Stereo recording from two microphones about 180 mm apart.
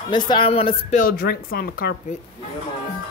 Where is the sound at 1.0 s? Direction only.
55° left (ahead or behind).